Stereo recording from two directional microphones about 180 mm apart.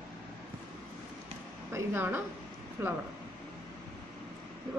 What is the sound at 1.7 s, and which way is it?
A woman's voice, 10° right (ahead or behind).